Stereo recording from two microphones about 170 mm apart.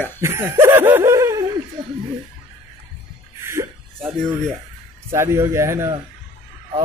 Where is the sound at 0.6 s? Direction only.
10° right (ahead or behind).